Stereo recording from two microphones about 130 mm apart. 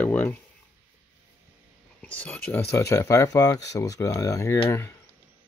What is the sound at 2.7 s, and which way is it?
Speech, 20° left (ahead or behind).